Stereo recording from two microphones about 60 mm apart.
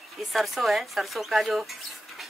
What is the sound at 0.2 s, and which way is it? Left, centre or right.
Speech, centre.